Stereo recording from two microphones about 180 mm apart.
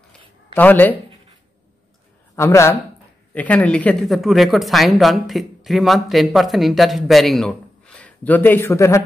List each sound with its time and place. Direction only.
0.6 s a man's voice: 10° left (ahead or behind)
2.3 s a man's voice: 15° left (ahead or behind)